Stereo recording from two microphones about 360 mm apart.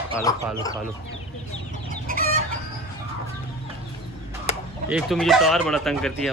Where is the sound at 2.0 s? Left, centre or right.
Right.